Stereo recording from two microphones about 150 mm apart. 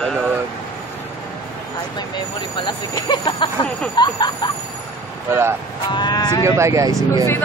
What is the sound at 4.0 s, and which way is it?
Speech, 30° left (ahead or behind).